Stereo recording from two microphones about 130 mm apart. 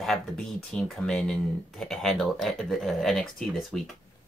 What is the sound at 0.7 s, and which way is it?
Speech, centre (ahead or behind).